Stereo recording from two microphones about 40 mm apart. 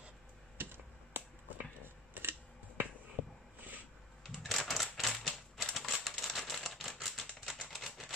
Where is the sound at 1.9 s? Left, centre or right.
Right.